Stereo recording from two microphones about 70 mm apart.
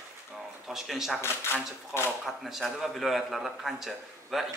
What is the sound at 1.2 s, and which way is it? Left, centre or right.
Speech, left.